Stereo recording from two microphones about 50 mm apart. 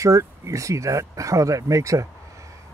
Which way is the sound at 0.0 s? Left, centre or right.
Right.